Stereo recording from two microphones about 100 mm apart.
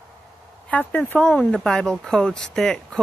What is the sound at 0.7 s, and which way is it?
Speech, 15° left (ahead or behind).